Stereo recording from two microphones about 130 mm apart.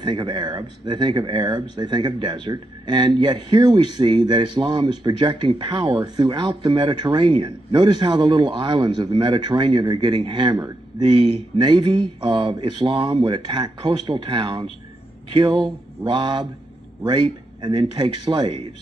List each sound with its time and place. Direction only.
0.0 s speech: 35° right (ahead or behind)